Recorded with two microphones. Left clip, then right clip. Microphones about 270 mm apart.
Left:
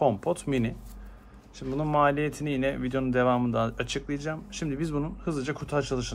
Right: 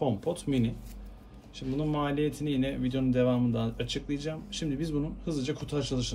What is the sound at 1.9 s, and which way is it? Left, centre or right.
A man's voice, left.